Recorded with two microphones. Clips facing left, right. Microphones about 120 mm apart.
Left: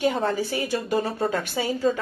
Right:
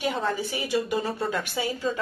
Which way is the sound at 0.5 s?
45° left (ahead or behind).